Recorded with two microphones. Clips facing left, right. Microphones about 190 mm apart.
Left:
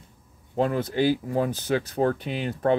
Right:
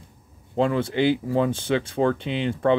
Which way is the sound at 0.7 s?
25° right (ahead or behind).